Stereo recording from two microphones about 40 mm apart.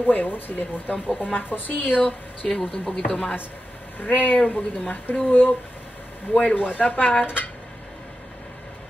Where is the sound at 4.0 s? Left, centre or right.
Left.